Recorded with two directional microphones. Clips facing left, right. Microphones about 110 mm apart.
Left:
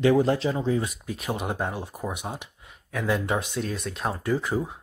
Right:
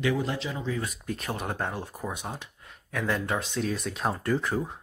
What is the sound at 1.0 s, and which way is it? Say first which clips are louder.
Speech: left 3 dB; 10° left (ahead or behind).